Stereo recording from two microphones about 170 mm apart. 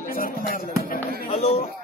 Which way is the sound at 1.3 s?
35° left (ahead or behind).